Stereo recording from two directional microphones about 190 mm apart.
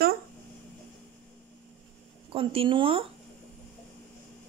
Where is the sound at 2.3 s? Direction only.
30° right (ahead or behind).